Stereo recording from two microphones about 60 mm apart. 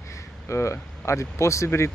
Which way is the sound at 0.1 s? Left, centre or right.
Left.